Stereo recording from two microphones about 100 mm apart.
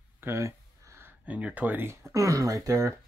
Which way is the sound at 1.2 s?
15° right (ahead or behind).